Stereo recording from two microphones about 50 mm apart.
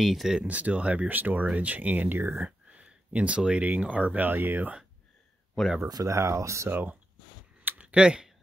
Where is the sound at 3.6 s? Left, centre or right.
Right.